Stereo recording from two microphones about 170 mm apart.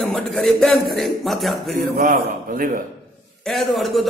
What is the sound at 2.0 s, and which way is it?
Speech, 55° right (ahead or behind).